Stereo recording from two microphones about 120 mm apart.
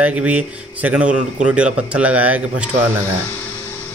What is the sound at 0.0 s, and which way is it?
Speech, 10° right (ahead or behind).